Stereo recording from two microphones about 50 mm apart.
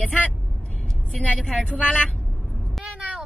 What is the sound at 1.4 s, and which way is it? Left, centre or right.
Speech, centre.